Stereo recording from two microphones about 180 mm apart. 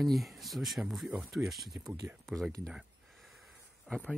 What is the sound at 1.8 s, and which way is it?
Speech, 20° right (ahead or behind).